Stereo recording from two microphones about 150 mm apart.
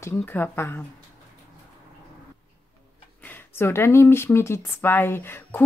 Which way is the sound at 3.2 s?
15° left (ahead or behind).